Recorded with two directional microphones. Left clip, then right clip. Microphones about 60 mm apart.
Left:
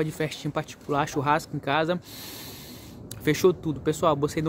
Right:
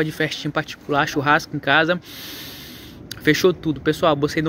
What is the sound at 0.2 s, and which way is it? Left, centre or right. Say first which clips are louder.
Speech: right 7 dB; left.